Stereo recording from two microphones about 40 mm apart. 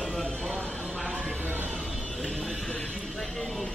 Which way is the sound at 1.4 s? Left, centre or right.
Right.